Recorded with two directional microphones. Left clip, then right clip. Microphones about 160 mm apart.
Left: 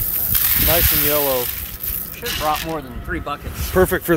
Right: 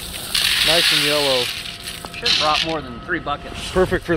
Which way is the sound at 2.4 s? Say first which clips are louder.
Right 3 dB; 40° left (ahead or behind).